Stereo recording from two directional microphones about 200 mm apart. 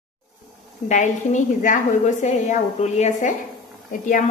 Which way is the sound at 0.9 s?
35° left (ahead or behind).